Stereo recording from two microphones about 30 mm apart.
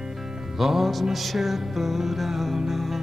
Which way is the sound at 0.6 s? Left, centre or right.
Centre.